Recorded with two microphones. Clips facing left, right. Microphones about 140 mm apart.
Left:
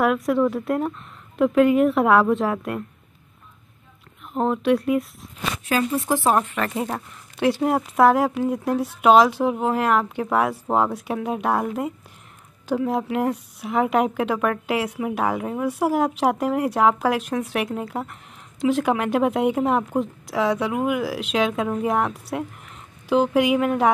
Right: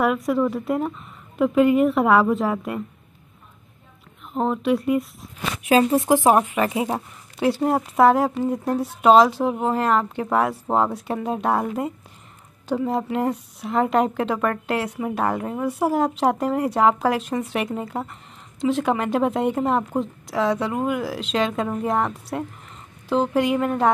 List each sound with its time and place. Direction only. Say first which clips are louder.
0.0 s speech: left 1 dB; centre (ahead or behind)
4.3 s speech: left 1 dB; centre (ahead or behind)
5.6 s speech: right 6 dB; 25° right (ahead or behind)
6.0 s speech: right 4 dB; 15° right (ahead or behind); by 23.9 s 5° left (ahead or behind)